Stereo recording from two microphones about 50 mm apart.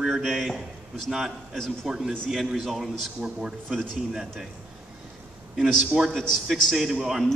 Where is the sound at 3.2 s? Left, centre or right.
Centre.